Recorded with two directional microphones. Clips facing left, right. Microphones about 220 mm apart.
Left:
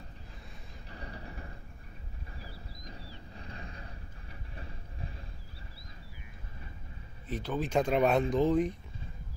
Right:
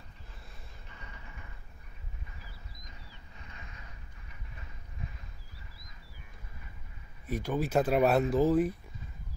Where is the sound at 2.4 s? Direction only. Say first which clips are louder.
Left 6 dB; 35° left (ahead or behind).